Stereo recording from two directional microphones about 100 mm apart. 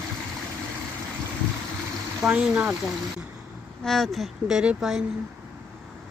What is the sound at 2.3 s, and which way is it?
Speech, 15° right (ahead or behind).